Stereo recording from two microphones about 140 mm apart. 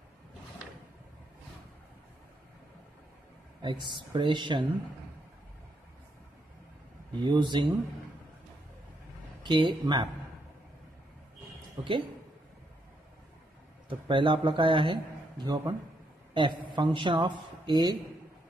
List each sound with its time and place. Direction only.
3.6 s speech: 30° right (ahead or behind)
7.2 s speech: 35° right (ahead or behind)
9.4 s speech: 35° right (ahead or behind)
13.8 s speech: 35° right (ahead or behind)